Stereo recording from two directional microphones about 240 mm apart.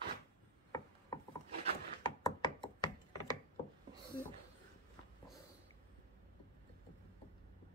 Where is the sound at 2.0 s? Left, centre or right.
Centre.